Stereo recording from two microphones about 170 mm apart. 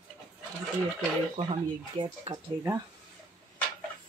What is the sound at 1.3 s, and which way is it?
Speech, 35° right (ahead or behind).